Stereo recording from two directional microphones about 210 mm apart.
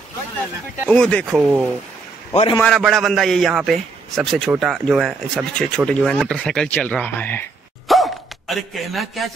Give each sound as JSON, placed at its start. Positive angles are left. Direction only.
{"t": 0.8, "sound": "a man's voice", "side_deg": 5}
{"t": 1.3, "sound": "a man's voice", "side_deg": -5}
{"t": 2.3, "sound": "a man's voice", "side_deg": 25}
{"t": 2.6, "sound": "a man's voice", "side_deg": 0}
{"t": 7.9, "sound": "a sound", "side_deg": 0}